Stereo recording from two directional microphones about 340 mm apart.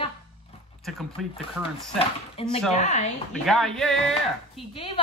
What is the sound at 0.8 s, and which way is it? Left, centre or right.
Speech, centre.